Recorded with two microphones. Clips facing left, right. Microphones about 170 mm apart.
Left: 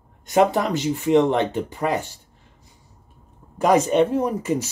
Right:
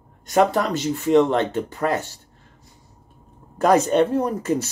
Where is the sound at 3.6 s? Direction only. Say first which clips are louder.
Even; 10° left (ahead or behind).